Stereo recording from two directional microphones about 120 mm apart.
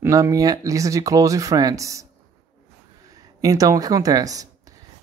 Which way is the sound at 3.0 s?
30° right (ahead or behind).